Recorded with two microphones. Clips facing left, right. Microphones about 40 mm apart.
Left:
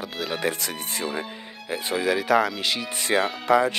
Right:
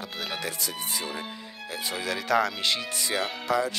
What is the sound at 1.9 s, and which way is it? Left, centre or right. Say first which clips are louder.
Speech: left 5 dB; centre.